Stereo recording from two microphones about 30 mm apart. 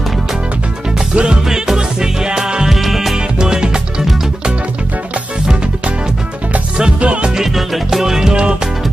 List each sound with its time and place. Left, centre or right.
1.1 s music: right
1.5 s music: right
2.7 s music: centre
3.3 s music: right
7.0 s music: right
7.4 s music: centre
8.0 s music: centre
8.3 s music: right